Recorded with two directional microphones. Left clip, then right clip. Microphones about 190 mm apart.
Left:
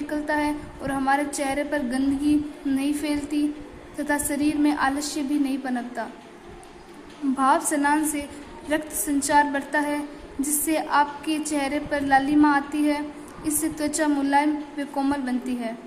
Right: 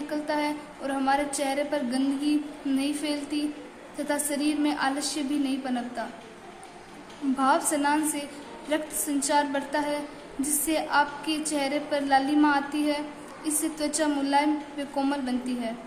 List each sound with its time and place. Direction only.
0.1 s a woman's voice: 15° left (ahead or behind)
7.3 s a woman's voice: 15° left (ahead or behind)